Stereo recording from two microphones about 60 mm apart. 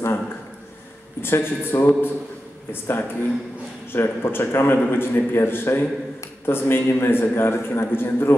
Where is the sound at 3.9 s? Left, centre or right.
Left.